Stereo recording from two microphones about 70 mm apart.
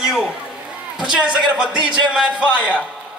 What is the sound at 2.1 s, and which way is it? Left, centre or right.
Speech, centre.